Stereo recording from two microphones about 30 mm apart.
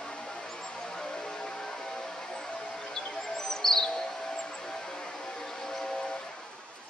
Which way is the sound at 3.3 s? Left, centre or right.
Centre.